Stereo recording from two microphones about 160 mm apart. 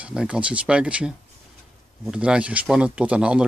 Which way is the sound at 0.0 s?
5° right (ahead or behind).